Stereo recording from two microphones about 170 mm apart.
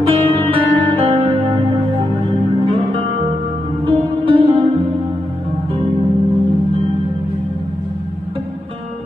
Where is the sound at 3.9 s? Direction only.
35° right (ahead or behind).